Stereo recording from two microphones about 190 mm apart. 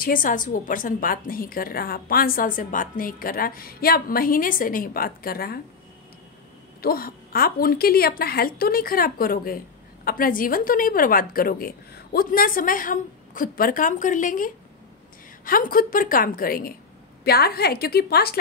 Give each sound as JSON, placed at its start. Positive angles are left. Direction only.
{"t": 0.0, "sound": "a woman's voice", "side_deg": 45}
{"t": 6.8, "sound": "a woman's voice", "side_deg": 50}